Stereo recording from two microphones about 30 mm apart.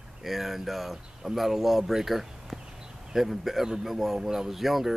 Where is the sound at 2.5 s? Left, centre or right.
Right.